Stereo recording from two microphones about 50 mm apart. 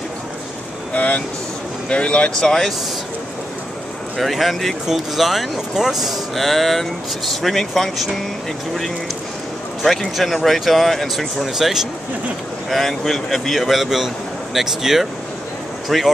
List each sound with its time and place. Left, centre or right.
0.9 s speech: left
2.4 s speech: centre
4.2 s speech: centre
9.8 s speech: centre
12.6 s speech: centre